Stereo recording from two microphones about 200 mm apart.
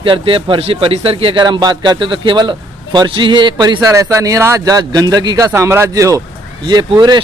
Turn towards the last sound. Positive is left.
turn(degrees=-20)  # may be behind; listen again after turning